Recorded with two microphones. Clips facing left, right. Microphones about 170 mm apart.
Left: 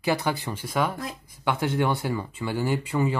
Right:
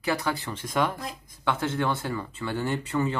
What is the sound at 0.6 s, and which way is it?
Speech, 5° left (ahead or behind).